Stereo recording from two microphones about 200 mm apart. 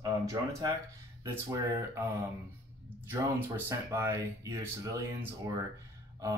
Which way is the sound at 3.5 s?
10° right (ahead or behind).